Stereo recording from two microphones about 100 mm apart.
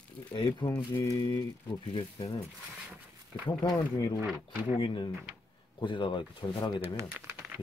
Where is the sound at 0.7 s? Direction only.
35° left (ahead or behind); by 2.3 s 55° left (ahead or behind).